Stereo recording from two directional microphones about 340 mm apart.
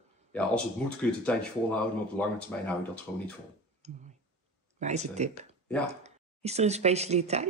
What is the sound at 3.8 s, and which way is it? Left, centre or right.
Speech, centre.